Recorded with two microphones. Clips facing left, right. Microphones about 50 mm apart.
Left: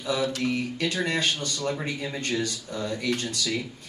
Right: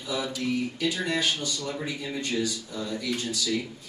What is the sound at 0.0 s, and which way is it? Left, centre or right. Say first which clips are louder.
A man's voice: left 4 dB; left.